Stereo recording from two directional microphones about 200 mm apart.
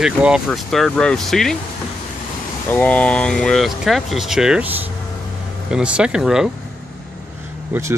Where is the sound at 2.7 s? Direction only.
5° left (ahead or behind).